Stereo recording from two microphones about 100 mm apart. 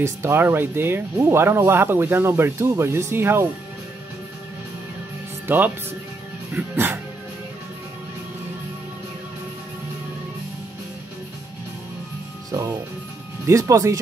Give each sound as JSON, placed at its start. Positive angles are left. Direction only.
{"t": 0.0, "sound": "speech", "side_deg": -25}
{"t": 5.5, "sound": "speech", "side_deg": -20}
{"t": 12.4, "sound": "music", "side_deg": -40}
{"t": 13.5, "sound": "speech", "side_deg": -35}